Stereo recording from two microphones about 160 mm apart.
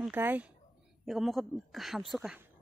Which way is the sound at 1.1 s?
Centre (ahead or behind).